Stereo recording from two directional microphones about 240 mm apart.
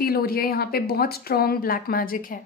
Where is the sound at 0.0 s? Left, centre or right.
Left.